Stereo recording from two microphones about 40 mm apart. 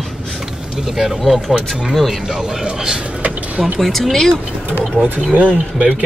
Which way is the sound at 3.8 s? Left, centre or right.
Centre.